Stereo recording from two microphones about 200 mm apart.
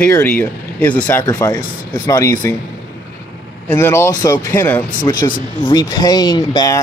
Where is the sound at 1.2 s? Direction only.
20° left (ahead or behind).